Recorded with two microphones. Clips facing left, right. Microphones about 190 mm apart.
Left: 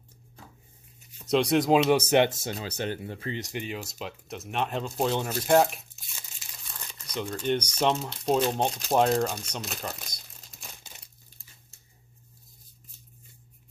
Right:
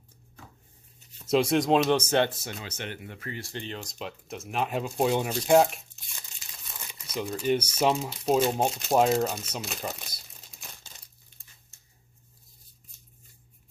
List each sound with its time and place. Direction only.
1.2 s speech: centre (ahead or behind); by 2.3 s 15° left (ahead or behind)
2.4 s speech: 35° left (ahead or behind); by 10.7 s 5° right (ahead or behind)